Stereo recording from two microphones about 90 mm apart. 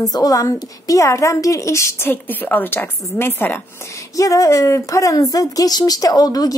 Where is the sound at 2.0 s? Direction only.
20° left (ahead or behind).